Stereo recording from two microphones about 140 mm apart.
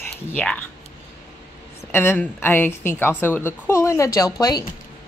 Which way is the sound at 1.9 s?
15° left (ahead or behind).